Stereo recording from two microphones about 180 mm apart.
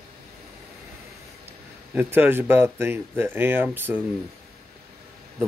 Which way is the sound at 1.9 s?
10° right (ahead or behind).